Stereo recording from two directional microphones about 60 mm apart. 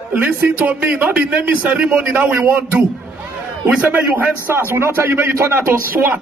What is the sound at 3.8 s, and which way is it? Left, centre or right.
A man's voice, right.